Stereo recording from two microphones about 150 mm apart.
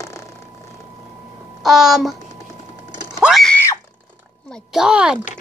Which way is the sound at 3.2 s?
Centre (ahead or behind).